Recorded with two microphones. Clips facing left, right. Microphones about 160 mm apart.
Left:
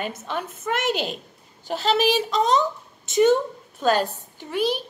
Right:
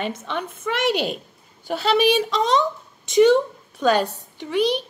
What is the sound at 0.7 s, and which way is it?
A woman's voice, 45° left (ahead or behind).